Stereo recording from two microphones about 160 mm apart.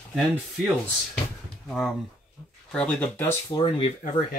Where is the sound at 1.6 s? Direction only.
Centre (ahead or behind).